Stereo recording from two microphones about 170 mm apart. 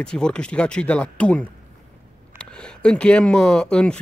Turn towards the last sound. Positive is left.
turn(degrees=5)  # may be behind; listen again after turning